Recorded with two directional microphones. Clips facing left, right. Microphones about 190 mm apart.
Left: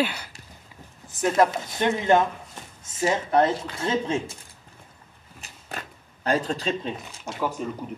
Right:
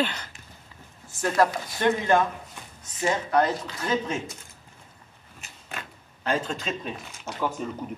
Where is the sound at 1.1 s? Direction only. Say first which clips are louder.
Left 2 dB; 20° left (ahead or behind).